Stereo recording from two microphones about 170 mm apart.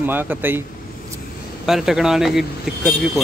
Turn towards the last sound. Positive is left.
turn(degrees=0)  # may be behind; listen again after turning